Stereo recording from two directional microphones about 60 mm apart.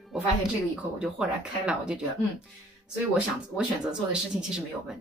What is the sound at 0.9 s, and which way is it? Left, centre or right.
Speech, centre.